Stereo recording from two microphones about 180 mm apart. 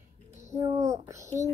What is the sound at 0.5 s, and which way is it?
Speech, 15° right (ahead or behind).